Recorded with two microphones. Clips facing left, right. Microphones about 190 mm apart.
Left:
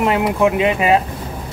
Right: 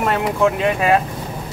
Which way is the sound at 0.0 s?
15° left (ahead or behind).